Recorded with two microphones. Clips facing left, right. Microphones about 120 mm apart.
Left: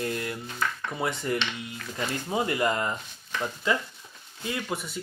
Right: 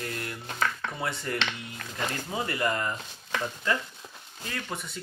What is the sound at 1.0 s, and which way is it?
Speech, 15° left (ahead or behind).